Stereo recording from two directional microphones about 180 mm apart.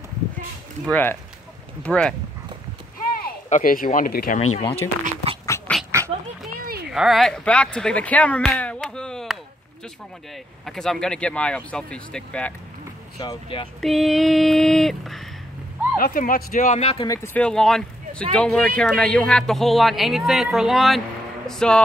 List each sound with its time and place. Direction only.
0.8 s speech: 10° left (ahead or behind)
3.3 s speech: 50° left (ahead or behind)
4.4 s speech: 35° left (ahead or behind)
5.0 s a sound: 35° right (ahead or behind)
5.9 s dog: 15° right (ahead or behind)
6.5 s a sound: 55° right (ahead or behind)
6.9 s speech: centre (ahead or behind)
10.6 s speech: centre (ahead or behind)
13.2 s speech: 25° left (ahead or behind)
13.7 s speech: centre (ahead or behind)
16.0 s speech: 50° left (ahead or behind); by 17.1 s 35° left (ahead or behind)
17.1 s speech: 15° left (ahead or behind)